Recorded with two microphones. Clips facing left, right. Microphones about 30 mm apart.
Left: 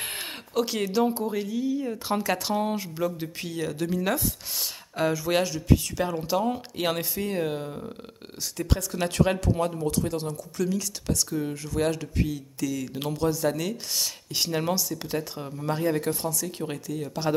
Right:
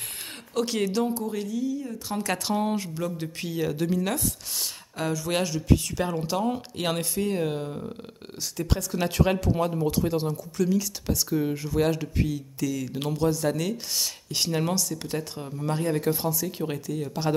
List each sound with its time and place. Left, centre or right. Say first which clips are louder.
0.6 s speech: left 1 dB; centre
1.1 s a sound: left 1 dB; centre
1.5 s speech: left 2 dB; left
2.1 s speech: even; centre
16.1 s speech: right 2 dB; centre